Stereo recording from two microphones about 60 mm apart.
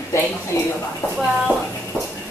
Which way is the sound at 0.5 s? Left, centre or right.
Left.